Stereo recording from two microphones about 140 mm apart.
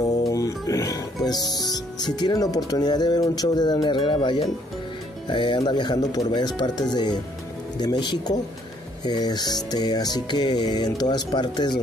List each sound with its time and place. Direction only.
0.2 s music: 25° left (ahead or behind)
1.7 s speech: 30° left (ahead or behind)